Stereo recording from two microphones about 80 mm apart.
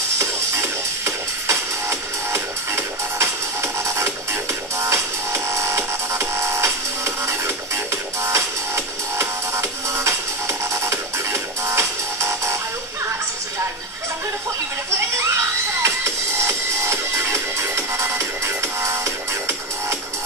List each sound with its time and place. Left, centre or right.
0.2 s music: right
15.8 s music: right